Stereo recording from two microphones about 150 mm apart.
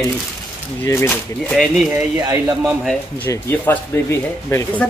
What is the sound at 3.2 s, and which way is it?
Speech, 15° left (ahead or behind).